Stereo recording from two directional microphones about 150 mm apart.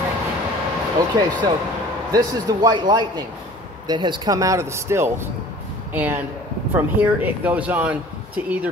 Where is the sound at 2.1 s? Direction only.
30° right (ahead or behind); by 6.2 s 10° right (ahead or behind).